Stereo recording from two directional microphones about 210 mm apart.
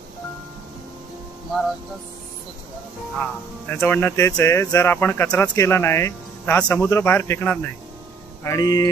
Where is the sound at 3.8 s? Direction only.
10° left (ahead or behind).